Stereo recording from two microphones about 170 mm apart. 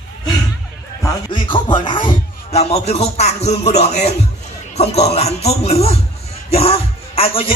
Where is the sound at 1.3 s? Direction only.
30° left (ahead or behind).